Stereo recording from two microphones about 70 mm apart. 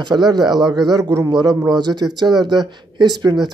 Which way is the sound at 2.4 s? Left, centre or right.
Right.